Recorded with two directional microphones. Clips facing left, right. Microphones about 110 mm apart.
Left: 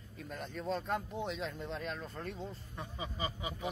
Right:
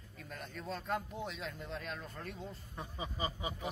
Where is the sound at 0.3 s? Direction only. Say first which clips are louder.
Left 5 dB; centre (ahead or behind).